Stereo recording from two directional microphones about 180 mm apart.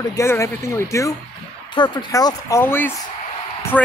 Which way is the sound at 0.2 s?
15° left (ahead or behind).